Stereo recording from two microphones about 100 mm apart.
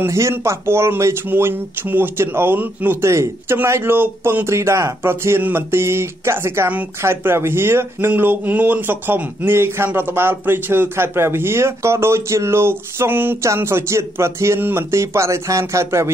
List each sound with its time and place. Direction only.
0.0 s speech: 25° right (ahead or behind)